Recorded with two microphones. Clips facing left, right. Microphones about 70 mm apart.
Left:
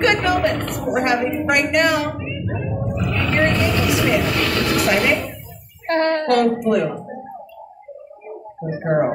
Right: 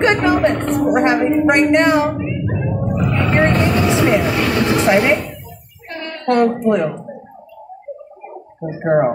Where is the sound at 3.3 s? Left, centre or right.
Right.